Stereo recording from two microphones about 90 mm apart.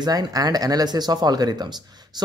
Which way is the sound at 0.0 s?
50° right (ahead or behind).